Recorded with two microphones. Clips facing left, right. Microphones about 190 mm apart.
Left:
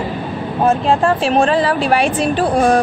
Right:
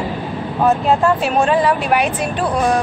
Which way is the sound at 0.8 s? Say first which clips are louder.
Left 1 dB; 30° left (ahead or behind).